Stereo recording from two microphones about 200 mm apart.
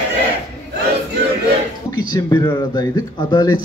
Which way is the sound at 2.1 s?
15° left (ahead or behind).